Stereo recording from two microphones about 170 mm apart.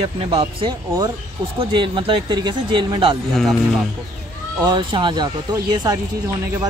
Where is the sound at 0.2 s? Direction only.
35° right (ahead or behind).